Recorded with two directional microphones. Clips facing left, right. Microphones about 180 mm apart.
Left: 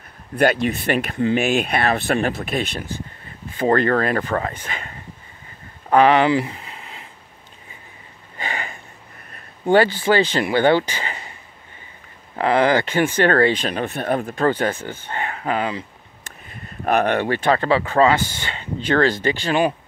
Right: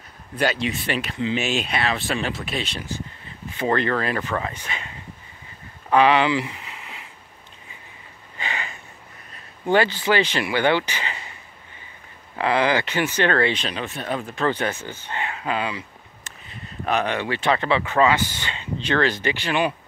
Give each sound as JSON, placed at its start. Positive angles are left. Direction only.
{"t": 0.4, "sound": "speech", "side_deg": 55}
{"t": 6.5, "sound": "a sound", "side_deg": 30}
{"t": 8.4, "sound": "sniff", "side_deg": 50}
{"t": 10.2, "sound": "speech", "side_deg": 45}
{"t": 12.4, "sound": "speech", "side_deg": 50}